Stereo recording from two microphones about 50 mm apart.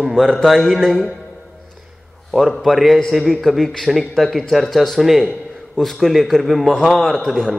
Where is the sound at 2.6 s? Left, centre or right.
Centre.